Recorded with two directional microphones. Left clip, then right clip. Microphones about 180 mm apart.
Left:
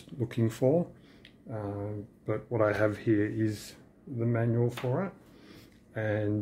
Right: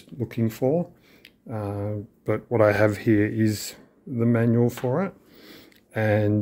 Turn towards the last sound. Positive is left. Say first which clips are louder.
# right 8 dB
turn(degrees=-45)  # may be behind; listen again after turning